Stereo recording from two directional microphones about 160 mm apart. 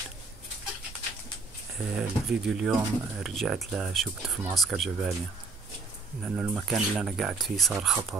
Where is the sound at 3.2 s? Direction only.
Centre (ahead or behind).